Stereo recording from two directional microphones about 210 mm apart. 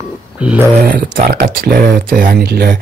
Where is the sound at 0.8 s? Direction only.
40° right (ahead or behind).